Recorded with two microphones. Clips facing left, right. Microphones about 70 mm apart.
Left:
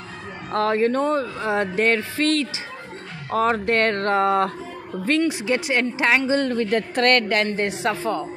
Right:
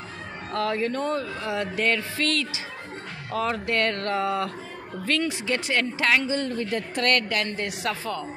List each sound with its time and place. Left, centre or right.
0.5 s speech: left
5.1 s speech: left
6.2 s speech: left
7.5 s speech: left